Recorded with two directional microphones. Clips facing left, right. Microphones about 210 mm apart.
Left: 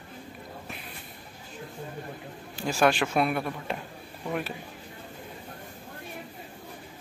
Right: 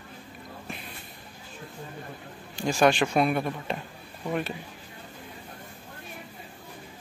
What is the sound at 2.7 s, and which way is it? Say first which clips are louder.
Speech: right 2 dB; 5° left (ahead or behind).